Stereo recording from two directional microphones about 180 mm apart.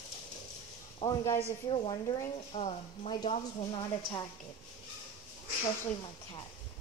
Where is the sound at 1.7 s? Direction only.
30° left (ahead or behind).